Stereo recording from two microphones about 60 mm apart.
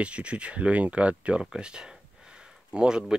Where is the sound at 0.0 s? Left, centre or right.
Centre.